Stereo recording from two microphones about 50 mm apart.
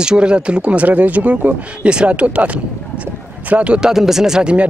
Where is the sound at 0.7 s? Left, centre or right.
Right.